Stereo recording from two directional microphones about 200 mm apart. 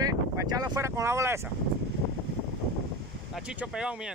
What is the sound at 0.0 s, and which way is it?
Wind noise, 20° right (ahead or behind).